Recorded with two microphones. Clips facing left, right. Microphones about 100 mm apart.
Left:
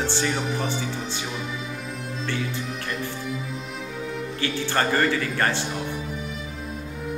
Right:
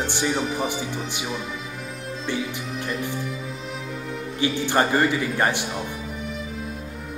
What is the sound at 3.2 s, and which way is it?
Music, centre (ahead or behind).